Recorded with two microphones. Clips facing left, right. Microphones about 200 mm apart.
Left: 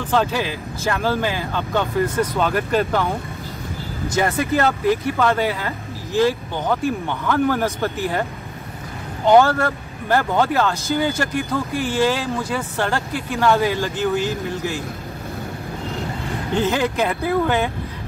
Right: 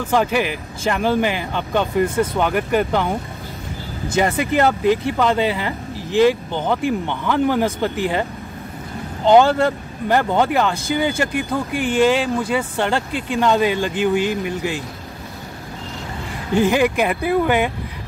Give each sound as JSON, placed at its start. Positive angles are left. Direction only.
{"t": 0.0, "sound": "speech", "side_deg": -15}
{"t": 4.2, "sound": "speech", "side_deg": -20}
{"t": 16.5, "sound": "speech", "side_deg": -10}